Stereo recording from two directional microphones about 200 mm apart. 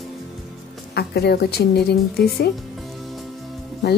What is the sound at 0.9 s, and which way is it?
A woman's voice, 55° left (ahead or behind).